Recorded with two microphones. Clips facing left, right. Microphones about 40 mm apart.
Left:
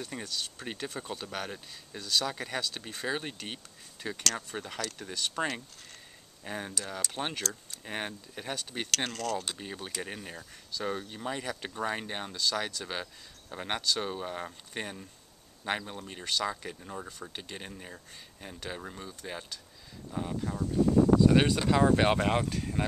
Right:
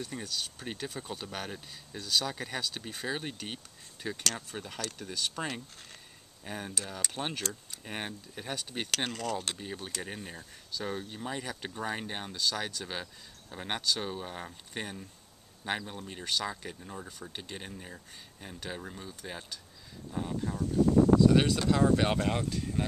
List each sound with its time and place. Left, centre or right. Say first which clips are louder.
0.0 s speech: even; centre
6.4 s speech: left 1 dB; centre
8.5 s speech: even; centre
9.6 s speech: left 1 dB; centre
21.3 s speech: left 1 dB; left